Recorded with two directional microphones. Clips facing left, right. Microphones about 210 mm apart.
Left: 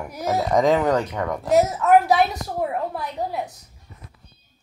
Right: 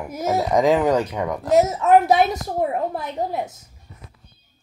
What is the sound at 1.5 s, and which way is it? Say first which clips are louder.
A woman's voice: right 1 dB; 20° right (ahead or behind).